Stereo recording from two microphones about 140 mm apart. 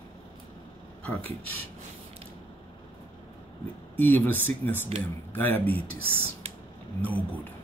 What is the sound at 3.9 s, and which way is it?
Speech, 15° left (ahead or behind).